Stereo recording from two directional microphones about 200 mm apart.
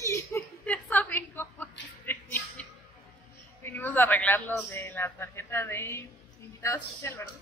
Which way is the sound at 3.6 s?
10° left (ahead or behind).